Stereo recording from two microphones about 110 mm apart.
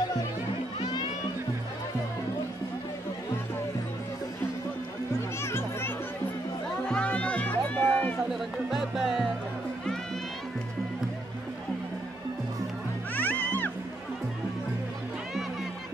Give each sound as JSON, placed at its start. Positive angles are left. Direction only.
{"t": 5.4, "sound": "music", "side_deg": 20}
{"t": 6.9, "sound": "music", "side_deg": 10}
{"t": 8.3, "sound": "music", "side_deg": -5}
{"t": 13.1, "sound": "music", "side_deg": 15}